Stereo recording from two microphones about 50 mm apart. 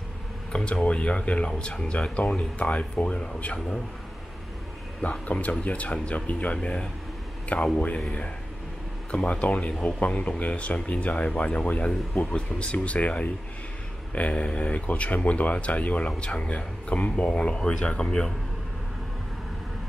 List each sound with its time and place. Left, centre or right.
0.7 s speech: left
5.2 s speech: left
9.1 s speech: left